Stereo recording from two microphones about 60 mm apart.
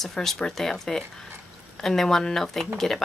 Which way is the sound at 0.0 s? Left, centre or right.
Centre.